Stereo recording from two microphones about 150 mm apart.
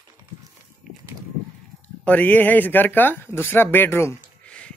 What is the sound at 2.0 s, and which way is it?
Speech, 10° left (ahead or behind).